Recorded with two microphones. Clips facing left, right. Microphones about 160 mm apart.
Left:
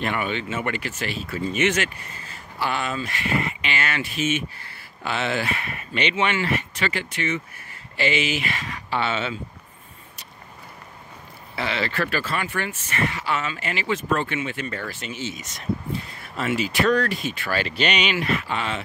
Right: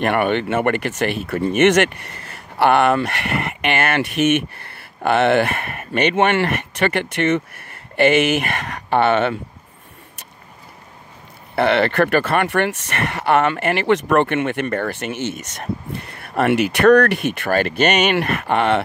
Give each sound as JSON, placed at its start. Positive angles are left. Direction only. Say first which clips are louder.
{"t": 0.0, "sound": "speech", "louder": "right 8 dB", "side_deg": -60}
{"t": 11.5, "sound": "speech", "louder": "right 10 dB", "side_deg": -60}